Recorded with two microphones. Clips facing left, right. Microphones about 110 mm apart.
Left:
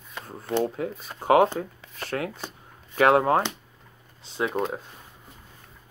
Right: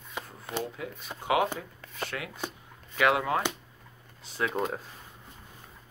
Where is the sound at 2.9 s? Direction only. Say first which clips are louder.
Left 7 dB; 40° left (ahead or behind).